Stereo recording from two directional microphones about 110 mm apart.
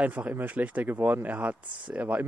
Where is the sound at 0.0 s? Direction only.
15° right (ahead or behind).